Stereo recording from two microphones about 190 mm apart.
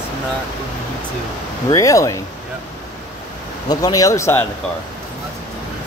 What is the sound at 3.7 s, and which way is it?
Speech, 20° left (ahead or behind).